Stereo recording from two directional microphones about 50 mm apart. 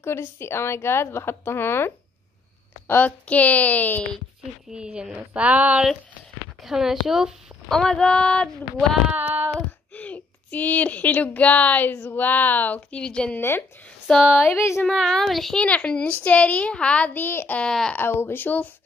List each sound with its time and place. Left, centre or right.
0.0 s speech: left
3.3 s speech: left
4.7 s speech: centre
6.6 s speech: centre
7.7 s a woman's voice: centre
9.1 s child singing: right
9.9 s speech: left
12.9 s a woman's voice: centre
13.4 s speech: left
14.1 s a woman's voice: centre
15.5 s a woman's voice: left
17.1 s speech: left
17.6 s a woman's voice: centre
17.9 s speech: left